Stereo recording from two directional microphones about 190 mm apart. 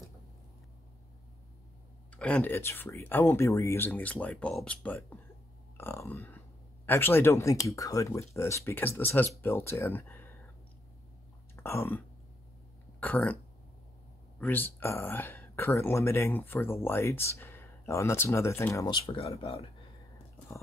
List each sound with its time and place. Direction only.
2.0 s speech: 5° left (ahead or behind)
11.5 s throat clearing: 15° left (ahead or behind)
13.0 s speech: 10° left (ahead or behind)
14.4 s speech: 10° left (ahead or behind)
19.0 s speech: 30° left (ahead or behind)